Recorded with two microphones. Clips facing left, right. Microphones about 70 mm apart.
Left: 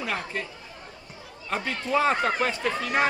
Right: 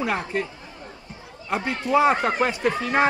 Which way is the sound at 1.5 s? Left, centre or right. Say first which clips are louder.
Right 4 dB; right.